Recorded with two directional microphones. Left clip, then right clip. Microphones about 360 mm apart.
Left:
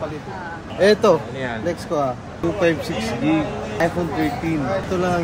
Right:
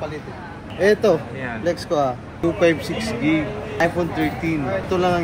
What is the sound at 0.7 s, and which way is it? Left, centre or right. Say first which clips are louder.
Speech: left 2 dB; centre.